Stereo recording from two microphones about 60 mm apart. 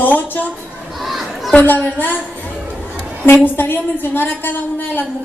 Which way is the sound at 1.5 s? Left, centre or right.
Left.